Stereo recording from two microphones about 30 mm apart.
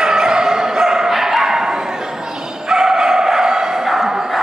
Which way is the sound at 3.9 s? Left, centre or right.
Centre.